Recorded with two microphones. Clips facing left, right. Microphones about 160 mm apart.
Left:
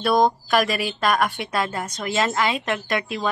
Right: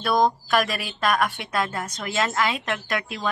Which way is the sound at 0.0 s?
Centre (ahead or behind).